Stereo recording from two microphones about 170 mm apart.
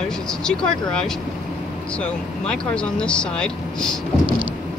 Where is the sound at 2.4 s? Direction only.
5° left (ahead or behind).